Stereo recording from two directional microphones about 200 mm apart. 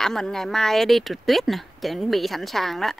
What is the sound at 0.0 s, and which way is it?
Speech, centre (ahead or behind).